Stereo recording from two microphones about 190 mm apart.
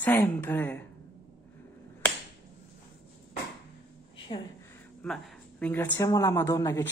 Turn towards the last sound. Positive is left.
turn(degrees=15)  # may be behind; listen again after turning